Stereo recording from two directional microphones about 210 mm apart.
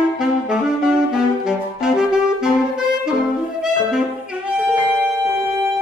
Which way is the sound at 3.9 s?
5° right (ahead or behind).